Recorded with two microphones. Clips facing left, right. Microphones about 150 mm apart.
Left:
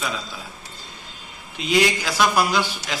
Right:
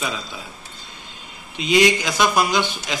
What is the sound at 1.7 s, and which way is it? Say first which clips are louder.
A man's voice: right 3 dB; 15° right (ahead or behind).